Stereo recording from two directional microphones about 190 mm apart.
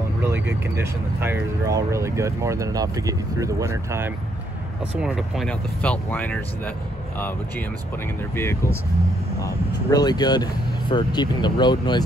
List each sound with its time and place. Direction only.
0.7 s speech: 10° right (ahead or behind)
5.0 s speech: centre (ahead or behind); by 12.0 s 25° left (ahead or behind)